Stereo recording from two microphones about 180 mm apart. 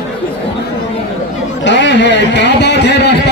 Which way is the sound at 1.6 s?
85° left.